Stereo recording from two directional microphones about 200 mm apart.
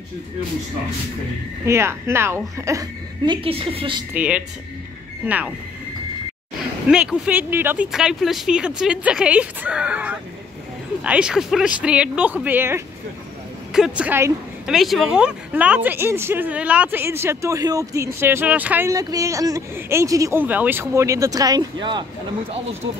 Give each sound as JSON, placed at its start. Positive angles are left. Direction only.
{"t": 1.7, "sound": "speech", "side_deg": -15}
{"t": 4.1, "sound": "speech", "side_deg": -5}
{"t": 6.9, "sound": "speech", "side_deg": -5}